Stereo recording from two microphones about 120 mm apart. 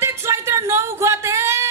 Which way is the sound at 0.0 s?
20° right (ahead or behind).